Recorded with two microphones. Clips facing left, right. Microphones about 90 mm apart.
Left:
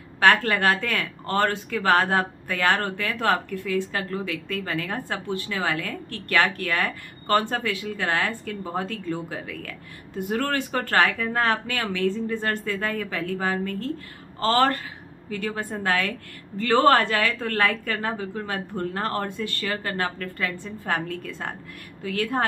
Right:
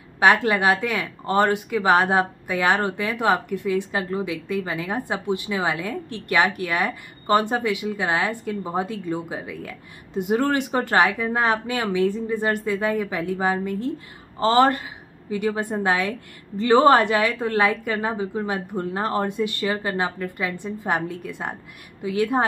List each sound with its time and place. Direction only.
0.2 s speech: 15° right (ahead or behind)